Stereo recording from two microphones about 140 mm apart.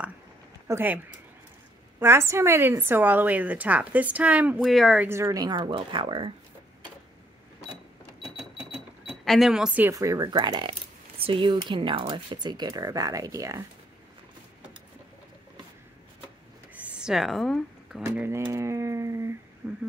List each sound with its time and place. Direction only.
0.7 s a woman's voice: 15° right (ahead or behind)
5.0 s speech: 20° right (ahead or behind); by 6.3 s 35° right (ahead or behind)
8.2 s cash register: centre (ahead or behind)
9.2 s speech: centre (ahead or behind)
9.8 s speech: 25° right (ahead or behind)
16.7 s a sound: 10° right (ahead or behind)
18.0 s a woman's voice: 15° right (ahead or behind)